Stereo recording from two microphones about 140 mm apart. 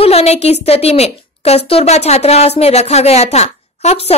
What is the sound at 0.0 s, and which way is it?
A woman's voice, 45° left (ahead or behind).